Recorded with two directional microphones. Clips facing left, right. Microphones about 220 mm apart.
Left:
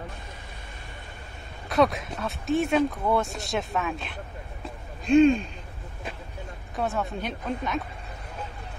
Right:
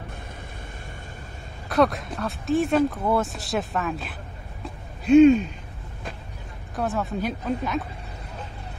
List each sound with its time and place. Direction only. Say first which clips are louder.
1.7 s speech: right 1 dB; centre (ahead or behind)
6.7 s speech: right 2 dB; centre (ahead or behind)